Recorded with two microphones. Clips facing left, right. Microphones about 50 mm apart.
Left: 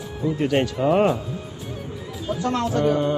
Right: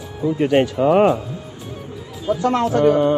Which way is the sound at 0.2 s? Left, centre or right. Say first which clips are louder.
Right 5 dB; centre.